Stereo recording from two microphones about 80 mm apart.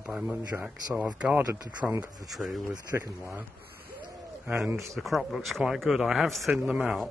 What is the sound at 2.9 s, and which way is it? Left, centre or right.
Speech, right.